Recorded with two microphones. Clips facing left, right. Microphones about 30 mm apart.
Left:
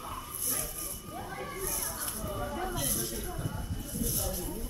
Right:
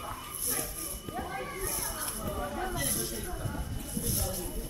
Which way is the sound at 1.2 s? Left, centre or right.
Centre.